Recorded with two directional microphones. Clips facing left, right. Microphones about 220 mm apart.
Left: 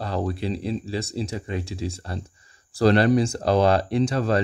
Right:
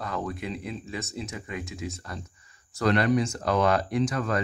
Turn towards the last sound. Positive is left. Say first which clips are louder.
# left 5 dB
turn(degrees=30)  # may be behind; listen again after turning